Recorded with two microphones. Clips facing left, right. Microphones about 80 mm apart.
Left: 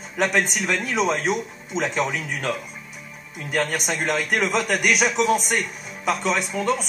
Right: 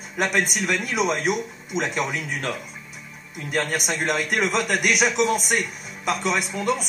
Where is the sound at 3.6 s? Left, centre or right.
Centre.